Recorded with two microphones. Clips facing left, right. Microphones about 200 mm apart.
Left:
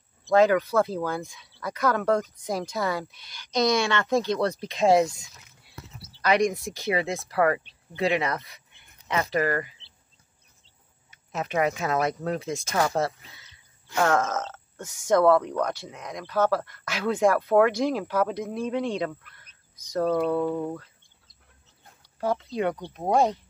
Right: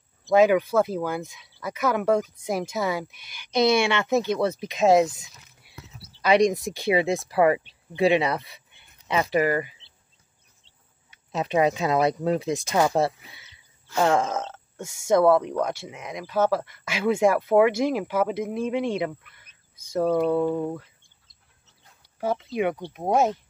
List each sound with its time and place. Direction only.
0.2 s speech: 10° right (ahead or behind)
6.5 s speech: 15° right (ahead or behind)
11.3 s speech: 20° right (ahead or behind)
19.9 s speech: 10° right (ahead or behind)
22.2 s speech: 5° right (ahead or behind)